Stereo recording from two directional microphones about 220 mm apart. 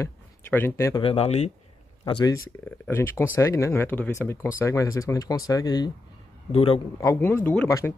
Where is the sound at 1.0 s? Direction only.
25° left (ahead or behind).